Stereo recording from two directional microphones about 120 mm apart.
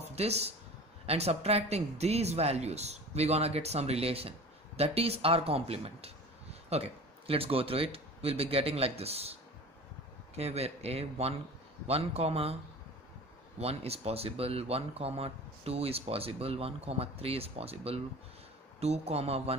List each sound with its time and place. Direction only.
0.1 s speech: 60° right (ahead or behind)
13.6 s speech: 55° right (ahead or behind)